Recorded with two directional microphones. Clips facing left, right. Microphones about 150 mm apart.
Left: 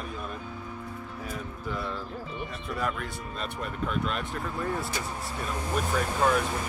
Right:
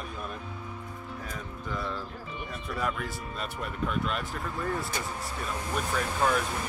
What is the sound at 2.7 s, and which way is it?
Speech, centre (ahead or behind).